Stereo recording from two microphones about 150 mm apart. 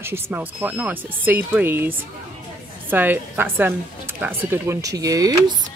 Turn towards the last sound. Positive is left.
turn(degrees=-25)  # may be behind; listen again after turning